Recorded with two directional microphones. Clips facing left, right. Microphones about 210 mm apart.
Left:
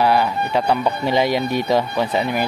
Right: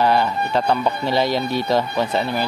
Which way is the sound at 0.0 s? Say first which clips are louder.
Left 1 dB; 10° left (ahead or behind).